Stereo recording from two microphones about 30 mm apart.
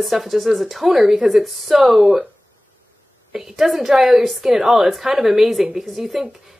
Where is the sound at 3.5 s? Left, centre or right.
Centre.